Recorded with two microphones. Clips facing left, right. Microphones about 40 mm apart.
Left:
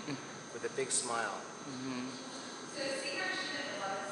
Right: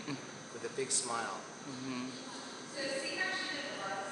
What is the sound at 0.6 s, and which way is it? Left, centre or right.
Speech, left.